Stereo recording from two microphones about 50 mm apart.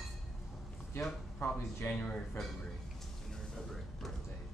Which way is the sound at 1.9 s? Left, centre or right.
Left.